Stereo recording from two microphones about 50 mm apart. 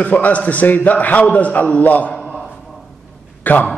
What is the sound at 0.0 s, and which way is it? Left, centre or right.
Speech, left.